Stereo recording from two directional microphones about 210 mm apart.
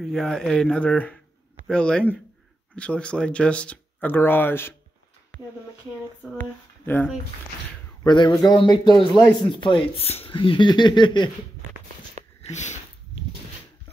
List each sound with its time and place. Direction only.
0.0 s speech: centre (ahead or behind)
8.0 s speech: 20° left (ahead or behind)
12.4 s a sound: 35° left (ahead or behind)